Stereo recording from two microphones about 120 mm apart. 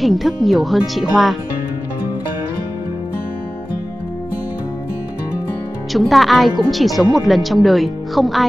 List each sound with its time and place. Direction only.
0.0 s speech: centre (ahead or behind)
5.9 s speech: centre (ahead or behind)